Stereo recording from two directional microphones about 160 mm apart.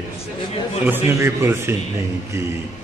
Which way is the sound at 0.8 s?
15° right (ahead or behind).